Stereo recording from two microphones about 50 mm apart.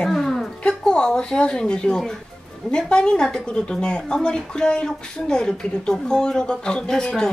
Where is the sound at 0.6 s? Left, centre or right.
Centre.